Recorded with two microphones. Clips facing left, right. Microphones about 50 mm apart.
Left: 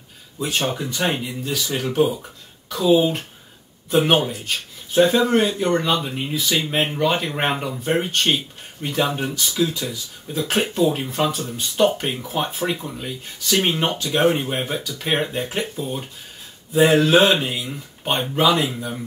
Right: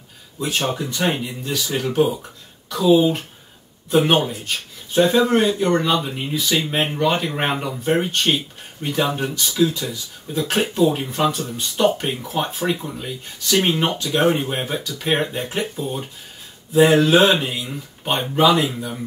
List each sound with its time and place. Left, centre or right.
0.4 s speech: centre